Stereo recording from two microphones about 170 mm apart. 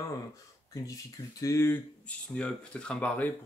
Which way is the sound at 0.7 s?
20° left (ahead or behind).